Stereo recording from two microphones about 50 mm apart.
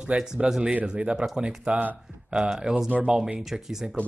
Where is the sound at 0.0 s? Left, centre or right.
Centre.